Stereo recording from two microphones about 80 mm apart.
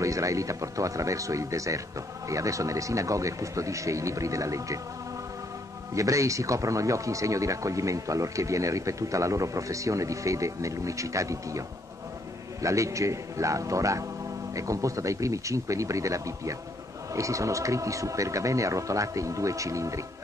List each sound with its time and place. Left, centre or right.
0.0 s speech: right
5.9 s speech: right
12.6 s speech: right